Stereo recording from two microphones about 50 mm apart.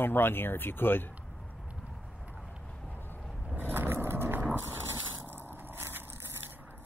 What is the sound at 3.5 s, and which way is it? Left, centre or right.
Vehicle, right.